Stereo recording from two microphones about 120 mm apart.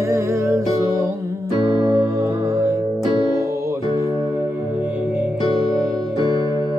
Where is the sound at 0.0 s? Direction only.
25° right (ahead or behind).